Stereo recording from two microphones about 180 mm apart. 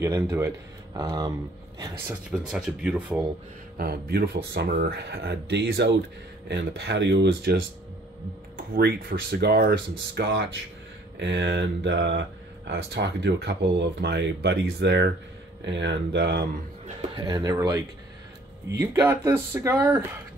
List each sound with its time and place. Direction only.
0.0 s a man's voice: 15° right (ahead or behind)
2.3 s speech: 5° right (ahead or behind)
3.7 s speech: 60° right (ahead or behind)
16.8 s a man's voice: 25° right (ahead or behind)